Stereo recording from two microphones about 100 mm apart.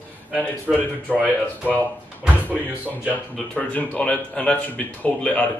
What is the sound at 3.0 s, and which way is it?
Speech, 15° left (ahead or behind).